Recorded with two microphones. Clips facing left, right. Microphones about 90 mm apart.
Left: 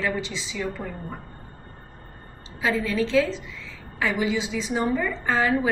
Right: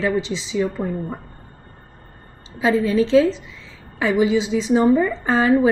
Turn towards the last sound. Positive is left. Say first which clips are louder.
# right 5 dB
turn(degrees=-25)  # may be behind; listen again after turning